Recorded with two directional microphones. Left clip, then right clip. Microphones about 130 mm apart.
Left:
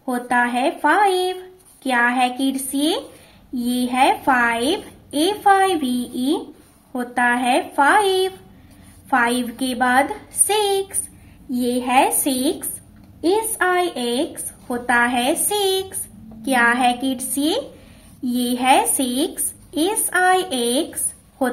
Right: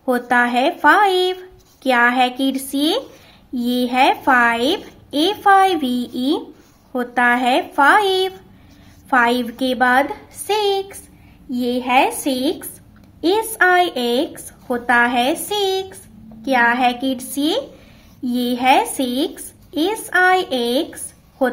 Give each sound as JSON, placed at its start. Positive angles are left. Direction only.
{"t": 0.0, "sound": "speech", "side_deg": -45}
{"t": 10.4, "sound": "a woman's voice", "side_deg": -15}
{"t": 13.2, "sound": "a woman's voice", "side_deg": -45}